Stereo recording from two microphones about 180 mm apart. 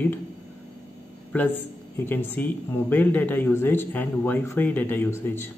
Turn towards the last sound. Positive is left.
turn(degrees=15)  # may be behind; listen again after turning